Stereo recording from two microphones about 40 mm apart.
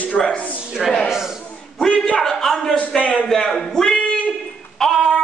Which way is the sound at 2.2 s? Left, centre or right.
Centre.